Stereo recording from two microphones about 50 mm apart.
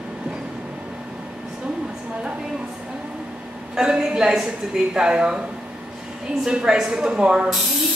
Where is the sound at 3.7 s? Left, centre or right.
Centre.